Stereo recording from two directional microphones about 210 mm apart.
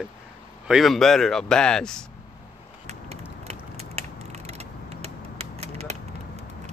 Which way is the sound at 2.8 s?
30° right (ahead or behind).